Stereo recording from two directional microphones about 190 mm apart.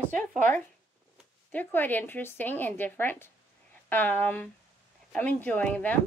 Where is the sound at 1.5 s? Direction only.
10° left (ahead or behind).